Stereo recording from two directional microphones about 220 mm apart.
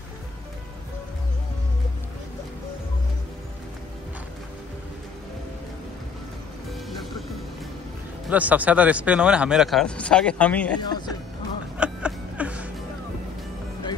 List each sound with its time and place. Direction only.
8.3 s speech: 5° right (ahead or behind)
10.8 s speech: 20° left (ahead or behind)
11.8 s a sound: 5° right (ahead or behind)